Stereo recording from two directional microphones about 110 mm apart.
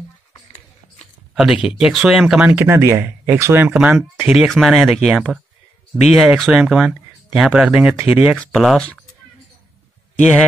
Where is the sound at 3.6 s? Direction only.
10° right (ahead or behind).